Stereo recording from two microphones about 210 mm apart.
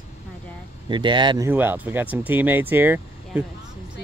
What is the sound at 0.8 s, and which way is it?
Speech, 20° right (ahead or behind).